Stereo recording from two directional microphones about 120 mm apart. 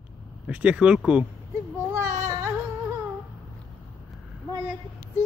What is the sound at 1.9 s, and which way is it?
Baby cry, 25° right (ahead or behind).